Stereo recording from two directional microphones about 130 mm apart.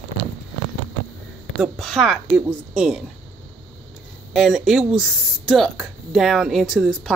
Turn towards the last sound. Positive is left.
turn(degrees=0)  # may be behind; listen again after turning